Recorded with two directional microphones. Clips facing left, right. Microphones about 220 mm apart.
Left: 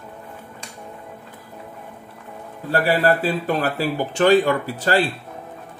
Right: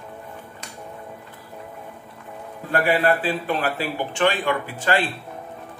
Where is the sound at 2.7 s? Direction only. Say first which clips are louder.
Left 1 dB; 35° left (ahead or behind).